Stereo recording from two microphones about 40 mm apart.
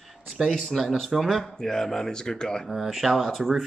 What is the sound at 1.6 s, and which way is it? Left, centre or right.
Speech, centre.